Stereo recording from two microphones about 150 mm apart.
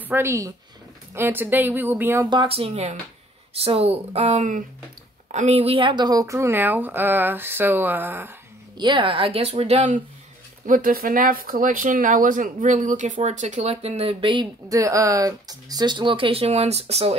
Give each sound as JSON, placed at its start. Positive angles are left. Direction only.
{"t": 0.1, "sound": "a woman's voice", "side_deg": -20}
{"t": 2.2, "sound": "a woman's voice", "side_deg": -35}
{"t": 8.7, "sound": "speech", "side_deg": -35}
{"t": 10.7, "sound": "speech", "side_deg": -65}